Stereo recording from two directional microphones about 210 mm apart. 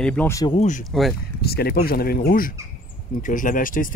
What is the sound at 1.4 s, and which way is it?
Speech, 45° left (ahead or behind).